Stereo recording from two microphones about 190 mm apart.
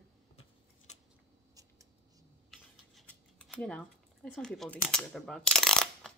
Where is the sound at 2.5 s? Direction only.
Centre (ahead or behind).